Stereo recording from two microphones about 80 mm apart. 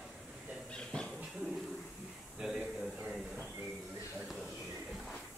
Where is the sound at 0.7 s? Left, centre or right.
Centre.